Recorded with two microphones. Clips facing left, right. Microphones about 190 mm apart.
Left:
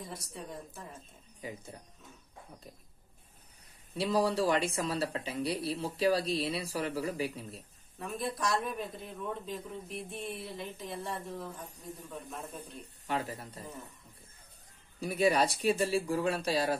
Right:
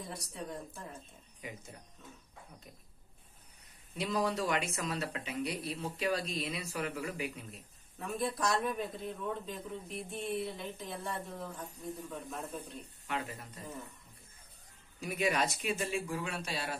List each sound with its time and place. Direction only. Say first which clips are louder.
0.0 s a man's voice: right 1 dB; centre (ahead or behind)
1.4 s speech: left 4 dB; 35° left (ahead or behind)
3.9 s speech: left 4 dB; 30° left (ahead or behind)
8.0 s a man's voice: even; centre (ahead or behind)
13.0 s speech: left 4 dB; 35° left (ahead or behind)
15.0 s speech: left 5 dB; 35° left (ahead or behind)